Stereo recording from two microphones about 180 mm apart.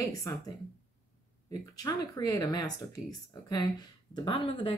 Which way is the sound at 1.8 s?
20° left (ahead or behind).